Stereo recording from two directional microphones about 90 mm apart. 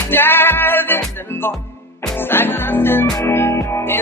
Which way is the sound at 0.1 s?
25° left (ahead or behind).